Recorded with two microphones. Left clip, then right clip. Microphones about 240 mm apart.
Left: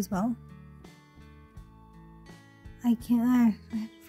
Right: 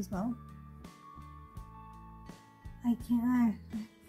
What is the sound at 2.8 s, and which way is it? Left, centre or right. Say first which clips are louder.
Music: left 5 dB; left.